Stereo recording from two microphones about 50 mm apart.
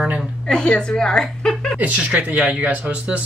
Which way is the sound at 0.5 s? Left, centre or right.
Centre.